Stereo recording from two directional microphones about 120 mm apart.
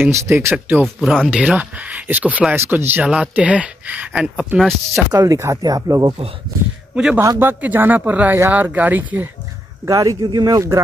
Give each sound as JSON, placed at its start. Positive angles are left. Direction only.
{"t": 0.0, "sound": "speech", "side_deg": -20}
{"t": 0.8, "sound": "speech", "side_deg": 5}
{"t": 1.4, "sound": "speech", "side_deg": -10}
{"t": 5.1, "sound": "speech", "side_deg": -30}
{"t": 7.2, "sound": "speech", "side_deg": -20}
{"t": 9.8, "sound": "speech", "side_deg": -30}